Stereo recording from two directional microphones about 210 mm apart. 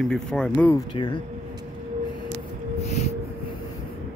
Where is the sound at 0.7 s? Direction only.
20° left (ahead or behind).